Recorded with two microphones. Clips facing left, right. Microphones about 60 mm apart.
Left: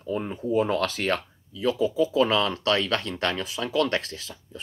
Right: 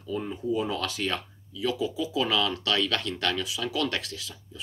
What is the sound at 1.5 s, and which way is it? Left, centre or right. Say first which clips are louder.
Speech: left 5 dB; left.